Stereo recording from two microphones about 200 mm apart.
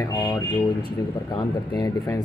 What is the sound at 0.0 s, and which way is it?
Speech, 15° left (ahead or behind).